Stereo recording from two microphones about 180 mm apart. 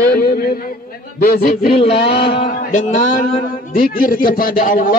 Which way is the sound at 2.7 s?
45° left (ahead or behind).